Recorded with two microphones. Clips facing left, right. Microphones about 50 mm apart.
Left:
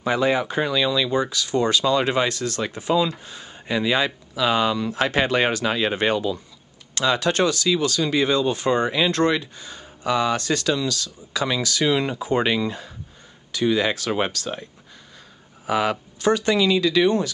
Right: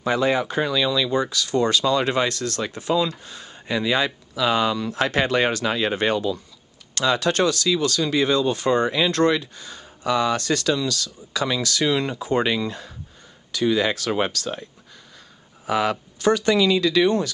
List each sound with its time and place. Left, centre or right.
0.0 s speech: centre
11.4 s speech: centre
15.6 s speech: centre